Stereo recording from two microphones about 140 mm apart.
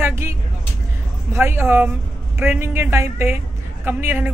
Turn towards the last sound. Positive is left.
turn(degrees=-15)  # may be behind; listen again after turning